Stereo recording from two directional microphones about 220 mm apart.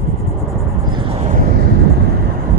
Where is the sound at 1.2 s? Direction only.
40° right (ahead or behind).